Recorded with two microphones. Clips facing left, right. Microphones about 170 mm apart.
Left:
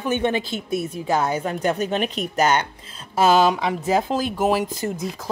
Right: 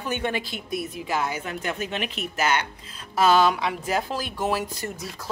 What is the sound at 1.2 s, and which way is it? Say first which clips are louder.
Speech: left 6 dB; 45° left (ahead or behind).